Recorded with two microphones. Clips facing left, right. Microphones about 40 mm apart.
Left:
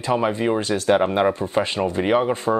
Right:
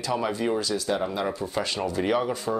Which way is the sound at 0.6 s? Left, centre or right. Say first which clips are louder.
Left 8 dB; left.